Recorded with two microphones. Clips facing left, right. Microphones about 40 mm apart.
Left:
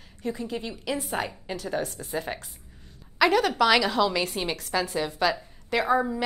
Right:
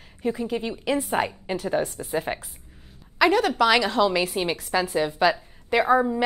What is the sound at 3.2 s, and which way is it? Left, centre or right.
A woman's voice, centre.